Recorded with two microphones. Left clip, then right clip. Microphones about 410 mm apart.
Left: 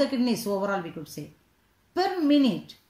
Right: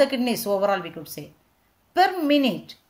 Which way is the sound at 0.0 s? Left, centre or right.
Centre.